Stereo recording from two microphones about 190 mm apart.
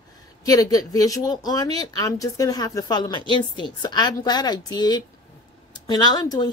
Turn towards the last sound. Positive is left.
turn(degrees=20)  # may be behind; listen again after turning